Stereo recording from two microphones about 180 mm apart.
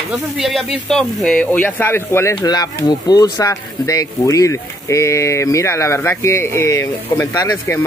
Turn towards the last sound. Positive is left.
turn(degrees=20)  # may be behind; listen again after turning